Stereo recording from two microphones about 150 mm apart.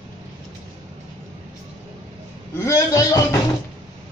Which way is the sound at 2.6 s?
20° left (ahead or behind).